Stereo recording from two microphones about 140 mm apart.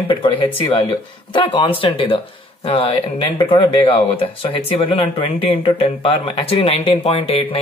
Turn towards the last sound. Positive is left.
turn(degrees=45)  # may be behind; listen again after turning